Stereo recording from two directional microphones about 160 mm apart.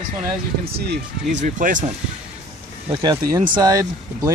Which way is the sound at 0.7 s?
90° right.